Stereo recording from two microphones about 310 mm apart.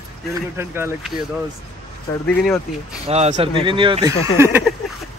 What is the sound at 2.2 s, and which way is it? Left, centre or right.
Speech, centre.